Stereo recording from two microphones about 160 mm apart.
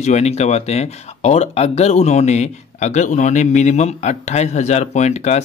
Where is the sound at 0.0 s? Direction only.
45° left (ahead or behind).